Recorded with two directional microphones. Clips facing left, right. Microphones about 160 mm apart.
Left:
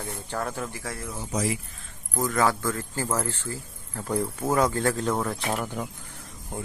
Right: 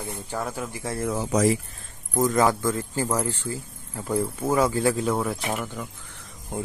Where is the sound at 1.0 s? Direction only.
65° right (ahead or behind).